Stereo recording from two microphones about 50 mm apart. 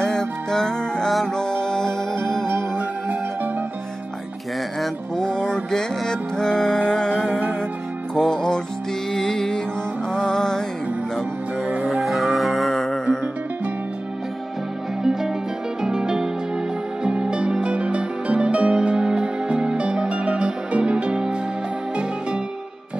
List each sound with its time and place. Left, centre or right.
0.0 s music: centre
2.8 s music: right
5.1 s music: centre
7.2 s music: right
8.1 s music: centre
11.6 s music: right
12.0 s music: centre
15.0 s music: centre